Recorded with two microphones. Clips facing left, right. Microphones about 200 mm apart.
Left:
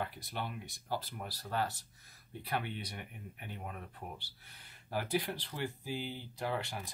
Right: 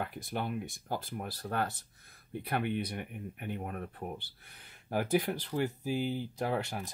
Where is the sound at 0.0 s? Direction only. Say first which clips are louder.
Right 4 dB; 50° right (ahead or behind).